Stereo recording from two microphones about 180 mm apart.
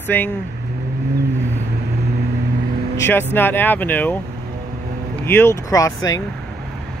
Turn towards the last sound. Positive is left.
turn(degrees=20)  # may be behind; listen again after turning